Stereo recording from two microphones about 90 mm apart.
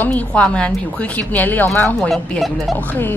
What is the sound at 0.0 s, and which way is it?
A woman's voice, 20° left (ahead or behind).